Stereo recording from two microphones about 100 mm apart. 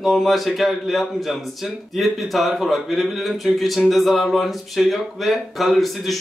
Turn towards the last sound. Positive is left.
turn(degrees=0)  # may be behind; listen again after turning